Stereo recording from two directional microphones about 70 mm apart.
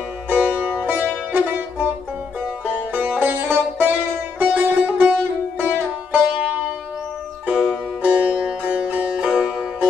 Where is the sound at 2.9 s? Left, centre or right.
Right.